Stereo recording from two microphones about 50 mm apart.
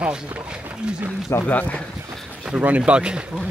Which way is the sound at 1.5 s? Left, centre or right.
Left.